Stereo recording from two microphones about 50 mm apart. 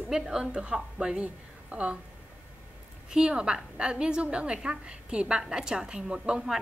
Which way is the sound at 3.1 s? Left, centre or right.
Centre.